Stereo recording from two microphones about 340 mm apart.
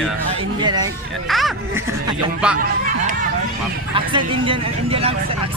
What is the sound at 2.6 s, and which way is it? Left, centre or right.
Speech, right.